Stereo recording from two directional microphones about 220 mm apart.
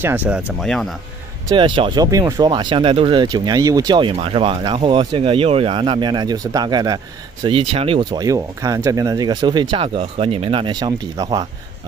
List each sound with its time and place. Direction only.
0.0 s speech: 10° right (ahead or behind)
1.5 s speech: 20° right (ahead or behind)